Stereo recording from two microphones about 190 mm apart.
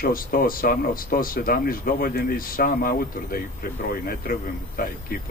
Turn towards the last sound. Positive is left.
turn(degrees=50)  # may be behind; listen again after turning